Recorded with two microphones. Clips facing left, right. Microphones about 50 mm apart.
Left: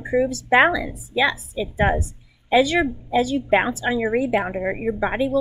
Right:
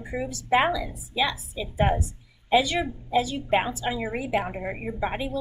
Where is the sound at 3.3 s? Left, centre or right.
Left.